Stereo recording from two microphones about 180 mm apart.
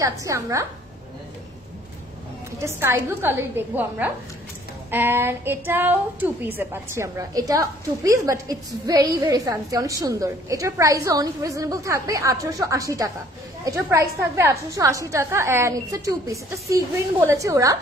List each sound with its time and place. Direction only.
0.0 s a woman's voice: 15° right (ahead or behind)
2.6 s a woman's voice: 15° right (ahead or behind)